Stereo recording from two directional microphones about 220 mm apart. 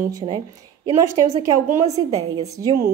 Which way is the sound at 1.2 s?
15° right (ahead or behind).